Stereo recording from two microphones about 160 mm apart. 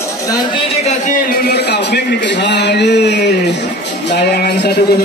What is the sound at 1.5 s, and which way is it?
A man's voice, 90° left.